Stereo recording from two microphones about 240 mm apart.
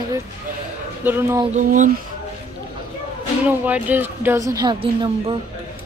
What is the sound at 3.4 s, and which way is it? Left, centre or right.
A woman's voice, centre.